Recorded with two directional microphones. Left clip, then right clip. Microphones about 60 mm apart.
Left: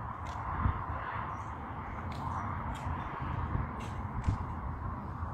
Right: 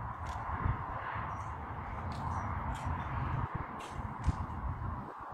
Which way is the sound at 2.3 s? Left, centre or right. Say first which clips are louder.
Left 1 dB; centre.